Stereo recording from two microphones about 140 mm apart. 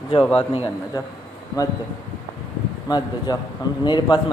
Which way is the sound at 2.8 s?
30° left (ahead or behind).